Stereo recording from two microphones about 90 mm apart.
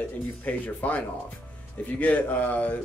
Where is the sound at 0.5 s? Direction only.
15° left (ahead or behind).